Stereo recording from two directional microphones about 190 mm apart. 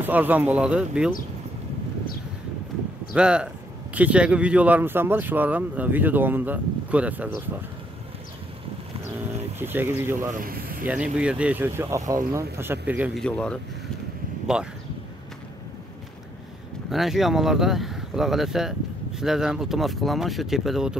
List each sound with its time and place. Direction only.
0.0 s speech: 10° right (ahead or behind)
3.2 s speech: 5° right (ahead or behind)
9.6 s speech: 10° right (ahead or behind)
10.4 s speech: 50° right (ahead or behind)
10.9 s speech: 5° right (ahead or behind)
13.2 s speech: 5° left (ahead or behind)
16.9 s speech: centre (ahead or behind)